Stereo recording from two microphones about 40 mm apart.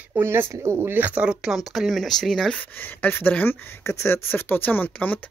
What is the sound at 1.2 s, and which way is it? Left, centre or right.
Speech, right.